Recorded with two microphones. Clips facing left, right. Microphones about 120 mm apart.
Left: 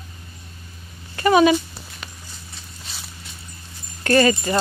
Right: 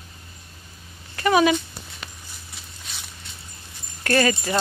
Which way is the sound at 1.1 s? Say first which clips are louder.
Left 3 dB; centre (ahead or behind).